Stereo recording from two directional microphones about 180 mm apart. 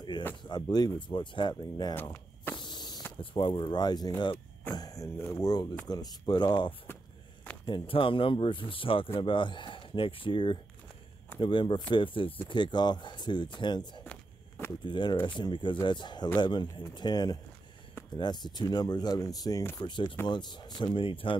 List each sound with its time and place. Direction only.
0.4 s speech: 20° left (ahead or behind)
2.5 s a sound: 25° left (ahead or behind)
3.1 s speech: 25° left (ahead or behind)
19.8 s speech: 25° left (ahead or behind)